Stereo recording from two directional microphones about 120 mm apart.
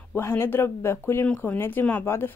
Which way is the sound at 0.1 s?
20° left (ahead or behind).